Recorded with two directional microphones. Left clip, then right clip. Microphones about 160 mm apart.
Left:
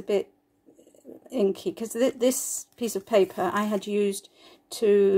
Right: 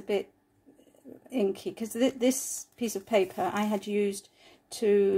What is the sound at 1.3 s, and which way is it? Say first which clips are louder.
Speech: left 4 dB; 35° left (ahead or behind).